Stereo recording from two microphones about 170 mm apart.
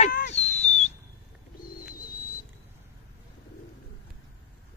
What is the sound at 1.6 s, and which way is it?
Bird, 55° left (ahead or behind).